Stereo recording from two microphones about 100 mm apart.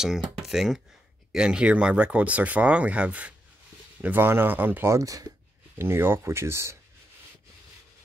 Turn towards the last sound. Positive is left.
turn(degrees=-25)  # may be behind; listen again after turning